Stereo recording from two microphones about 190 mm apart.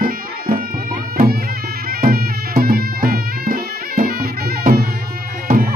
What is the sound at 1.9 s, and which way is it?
Bagpipes, 50° right (ahead or behind).